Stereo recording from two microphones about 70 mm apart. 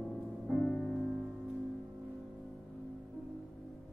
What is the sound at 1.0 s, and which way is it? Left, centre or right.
Music, centre.